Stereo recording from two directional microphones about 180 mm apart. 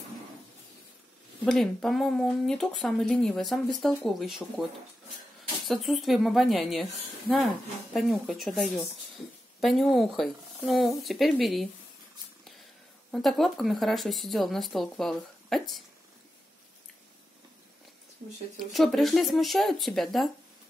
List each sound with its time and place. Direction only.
1.4 s speech: 5° left (ahead or behind)
5.7 s a woman's voice: centre (ahead or behind)
13.1 s speech: centre (ahead or behind)
18.6 s speech: centre (ahead or behind)